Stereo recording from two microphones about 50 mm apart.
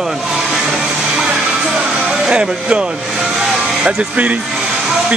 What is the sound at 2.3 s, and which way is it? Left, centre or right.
Speech, right.